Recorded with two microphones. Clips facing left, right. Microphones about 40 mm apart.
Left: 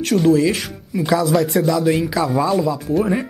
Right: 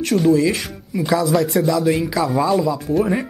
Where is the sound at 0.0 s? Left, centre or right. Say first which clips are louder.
Left 1 dB; centre.